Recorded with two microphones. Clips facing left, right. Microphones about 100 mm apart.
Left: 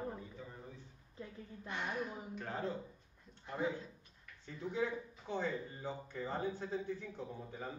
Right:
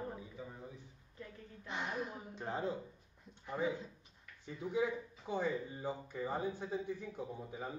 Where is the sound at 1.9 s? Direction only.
20° right (ahead or behind).